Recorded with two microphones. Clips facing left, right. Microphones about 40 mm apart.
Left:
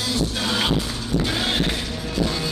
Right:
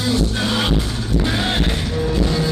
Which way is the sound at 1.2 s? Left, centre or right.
Centre.